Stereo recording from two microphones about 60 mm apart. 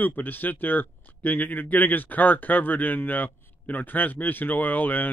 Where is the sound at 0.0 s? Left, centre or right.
Left.